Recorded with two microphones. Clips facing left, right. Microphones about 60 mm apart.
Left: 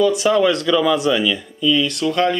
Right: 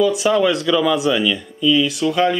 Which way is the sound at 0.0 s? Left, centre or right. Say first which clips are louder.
Left 1 dB; centre.